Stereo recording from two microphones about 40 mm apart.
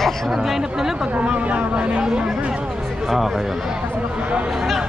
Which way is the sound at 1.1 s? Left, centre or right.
Right.